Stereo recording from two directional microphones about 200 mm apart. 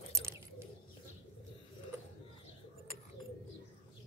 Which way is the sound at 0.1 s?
15° right (ahead or behind).